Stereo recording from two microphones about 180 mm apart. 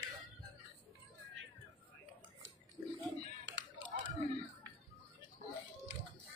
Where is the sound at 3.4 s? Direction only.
90° right.